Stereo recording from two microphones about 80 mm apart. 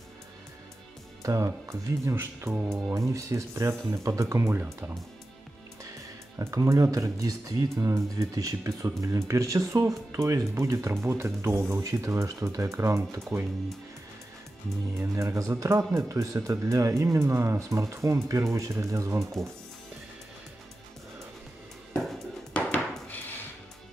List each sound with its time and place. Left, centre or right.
1.2 s speech: right
2.1 s speech: right
6.3 s speech: right
15.0 s speech: right
21.9 s a sound: centre